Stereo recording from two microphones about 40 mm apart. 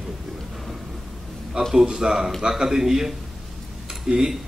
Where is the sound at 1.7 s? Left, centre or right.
Centre.